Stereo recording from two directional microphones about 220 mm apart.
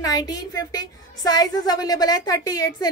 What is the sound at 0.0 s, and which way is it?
Speech, 15° left (ahead or behind).